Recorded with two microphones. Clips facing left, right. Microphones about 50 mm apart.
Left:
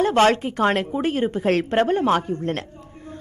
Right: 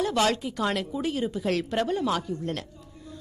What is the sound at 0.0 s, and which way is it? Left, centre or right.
A woman's voice, left.